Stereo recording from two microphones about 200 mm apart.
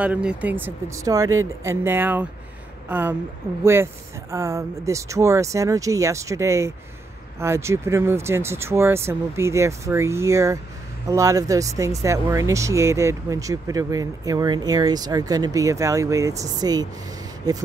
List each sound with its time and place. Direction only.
0.0 s speech: 5° right (ahead or behind)